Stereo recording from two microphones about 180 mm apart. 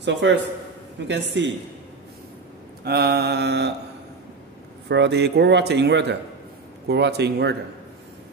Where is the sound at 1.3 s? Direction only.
90° right.